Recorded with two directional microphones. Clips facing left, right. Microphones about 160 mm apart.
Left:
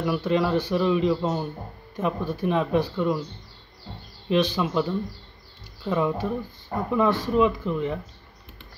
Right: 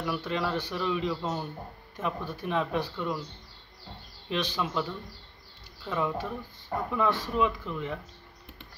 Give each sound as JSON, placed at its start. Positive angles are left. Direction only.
{"t": 0.0, "sound": "a man's voice", "side_deg": 15}
{"t": 4.3, "sound": "a man's voice", "side_deg": 15}